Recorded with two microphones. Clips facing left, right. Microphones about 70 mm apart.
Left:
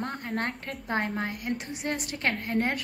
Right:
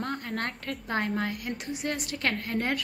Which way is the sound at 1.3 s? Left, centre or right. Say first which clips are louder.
Left 1 dB; left.